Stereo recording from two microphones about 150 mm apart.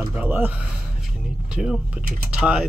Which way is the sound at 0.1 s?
10° right (ahead or behind).